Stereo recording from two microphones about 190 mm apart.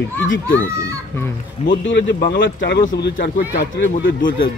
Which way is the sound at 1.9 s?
60° left (ahead or behind).